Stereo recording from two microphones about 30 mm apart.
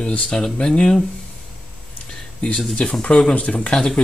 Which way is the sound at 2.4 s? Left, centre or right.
Left.